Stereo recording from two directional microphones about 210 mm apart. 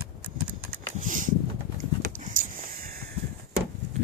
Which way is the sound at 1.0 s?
40° right (ahead or behind).